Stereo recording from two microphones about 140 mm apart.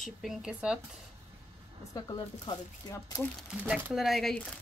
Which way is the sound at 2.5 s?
25° left (ahead or behind).